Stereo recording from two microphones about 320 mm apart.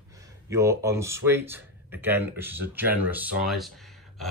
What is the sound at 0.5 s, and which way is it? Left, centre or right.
Speech, centre.